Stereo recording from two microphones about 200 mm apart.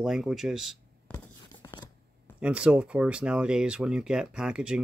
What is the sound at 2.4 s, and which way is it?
Speech, 5° right (ahead or behind).